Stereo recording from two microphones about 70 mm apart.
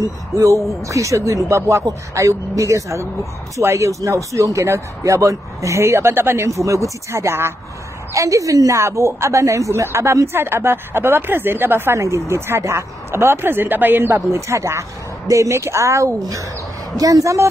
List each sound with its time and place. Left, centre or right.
0.8 s speech: right
8.1 s speech: right